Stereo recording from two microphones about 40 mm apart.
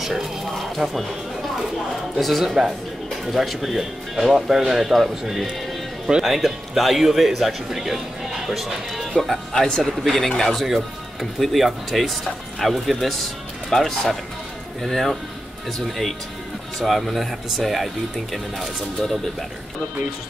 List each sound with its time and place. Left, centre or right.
0.0 s speech: centre
0.8 s speech: right
2.1 s speech: centre
6.2 s speech: centre
9.5 s speech: centre
10.6 s speech: centre